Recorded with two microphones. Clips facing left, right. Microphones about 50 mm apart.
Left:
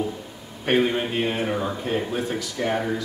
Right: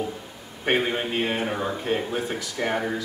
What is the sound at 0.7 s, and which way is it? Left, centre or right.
Speech, centre.